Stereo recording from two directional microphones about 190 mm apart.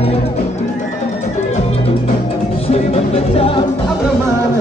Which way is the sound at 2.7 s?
30° left (ahead or behind).